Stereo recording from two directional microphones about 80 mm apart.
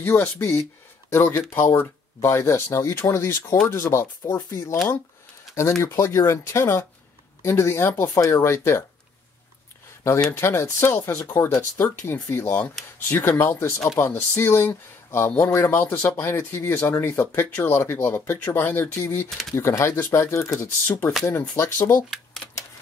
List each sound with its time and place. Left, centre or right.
0.0 s speech: left
5.8 s speech: left
10.3 s speech: left